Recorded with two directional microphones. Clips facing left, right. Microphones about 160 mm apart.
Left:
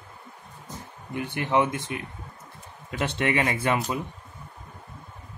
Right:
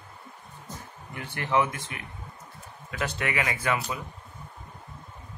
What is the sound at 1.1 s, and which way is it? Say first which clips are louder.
Speech: left 2 dB; 15° left (ahead or behind).